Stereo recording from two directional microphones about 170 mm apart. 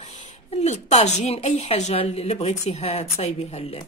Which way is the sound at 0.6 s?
40° left (ahead or behind).